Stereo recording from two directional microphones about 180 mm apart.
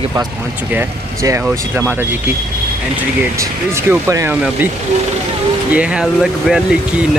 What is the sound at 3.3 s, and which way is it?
Speech, 15° right (ahead or behind).